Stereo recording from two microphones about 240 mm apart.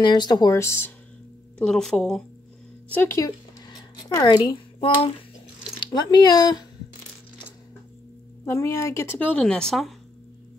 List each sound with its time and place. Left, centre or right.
0.0 s a woman's voice: centre
8.5 s a woman's voice: centre